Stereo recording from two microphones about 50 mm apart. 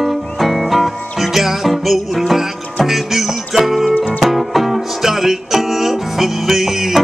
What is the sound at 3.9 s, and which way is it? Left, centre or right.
Music, left.